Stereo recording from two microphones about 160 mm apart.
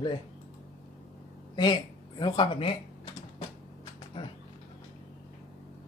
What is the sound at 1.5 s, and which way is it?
Speech, 25° left (ahead or behind).